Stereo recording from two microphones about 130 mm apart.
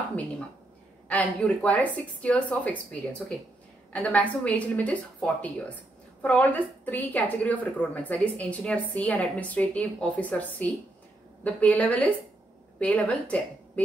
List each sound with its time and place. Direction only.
1.0 s a woman's voice: 10° left (ahead or behind)